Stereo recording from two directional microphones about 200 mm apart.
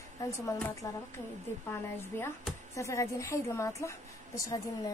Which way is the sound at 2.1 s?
10° left (ahead or behind).